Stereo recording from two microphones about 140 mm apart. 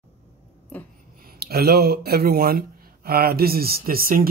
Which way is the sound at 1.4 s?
90° right.